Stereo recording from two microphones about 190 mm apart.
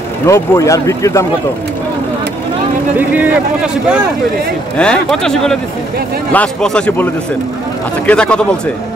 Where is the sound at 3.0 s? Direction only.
10° right (ahead or behind).